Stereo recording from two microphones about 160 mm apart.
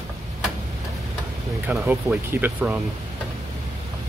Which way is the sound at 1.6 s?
10° right (ahead or behind).